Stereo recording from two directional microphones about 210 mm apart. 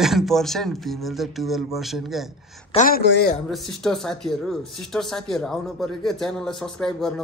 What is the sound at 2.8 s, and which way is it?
Speech, 45° left (ahead or behind).